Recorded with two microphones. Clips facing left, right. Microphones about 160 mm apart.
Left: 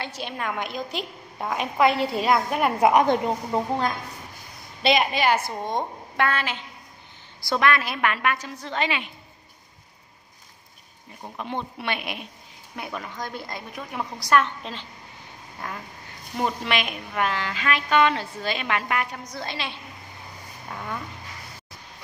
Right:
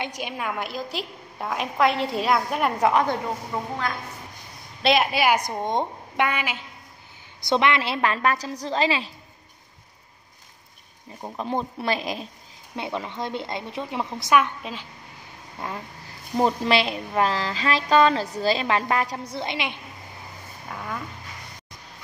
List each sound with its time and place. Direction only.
0.0 s a woman's voice: 15° right (ahead or behind)
2.9 s a woman's voice: 20° left (ahead or behind)
4.8 s a woman's voice: centre (ahead or behind)
7.4 s a woman's voice: 20° right (ahead or behind)
11.3 s a woman's voice: 35° right (ahead or behind)
14.3 s a woman's voice: 10° right (ahead or behind)
16.3 s a woman's voice: 35° right (ahead or behind)
20.7 s a woman's voice: centre (ahead or behind)